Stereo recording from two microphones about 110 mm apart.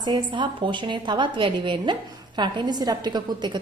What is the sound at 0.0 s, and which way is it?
A woman's voice, 45° right (ahead or behind).